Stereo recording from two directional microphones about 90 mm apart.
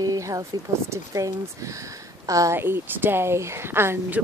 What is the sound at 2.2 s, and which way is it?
Speech, 40° right (ahead or behind).